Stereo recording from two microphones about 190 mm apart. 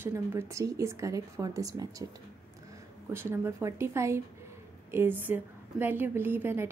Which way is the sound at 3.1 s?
10° right (ahead or behind).